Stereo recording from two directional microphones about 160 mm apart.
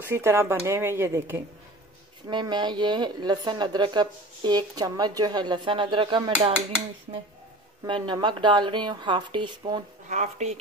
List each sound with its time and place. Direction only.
0.0 s speech: 15° right (ahead or behind)
2.2 s speech: 25° right (ahead or behind)
7.8 s speech: 30° right (ahead or behind)
10.0 s speech: 50° right (ahead or behind)